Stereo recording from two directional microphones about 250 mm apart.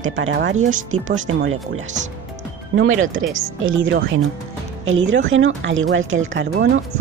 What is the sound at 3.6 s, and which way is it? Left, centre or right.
Speech, right.